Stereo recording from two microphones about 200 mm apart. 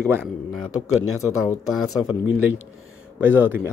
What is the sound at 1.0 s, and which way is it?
Speech, 90° left.